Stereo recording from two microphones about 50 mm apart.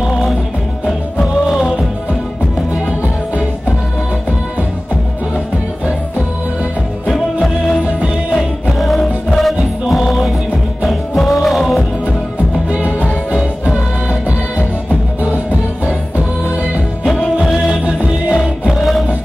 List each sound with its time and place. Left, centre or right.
1.2 s music: centre
7.4 s music: centre
12.7 s music: right
17.6 s music: centre